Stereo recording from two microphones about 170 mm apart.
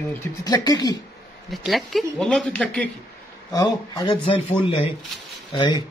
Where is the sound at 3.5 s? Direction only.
20° left (ahead or behind).